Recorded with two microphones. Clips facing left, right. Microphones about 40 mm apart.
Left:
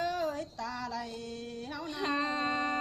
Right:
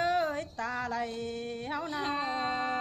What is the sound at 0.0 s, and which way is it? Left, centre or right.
Music, right.